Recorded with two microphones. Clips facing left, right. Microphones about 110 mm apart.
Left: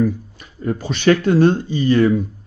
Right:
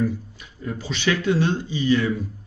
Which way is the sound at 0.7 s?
50° left (ahead or behind).